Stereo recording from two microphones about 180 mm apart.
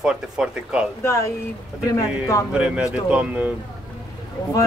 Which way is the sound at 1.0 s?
15° left (ahead or behind).